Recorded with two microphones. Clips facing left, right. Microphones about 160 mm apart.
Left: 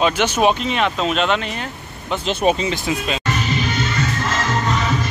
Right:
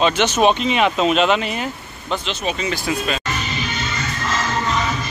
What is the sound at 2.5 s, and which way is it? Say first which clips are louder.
Speech: left 1 dB; 25° left (ahead or behind).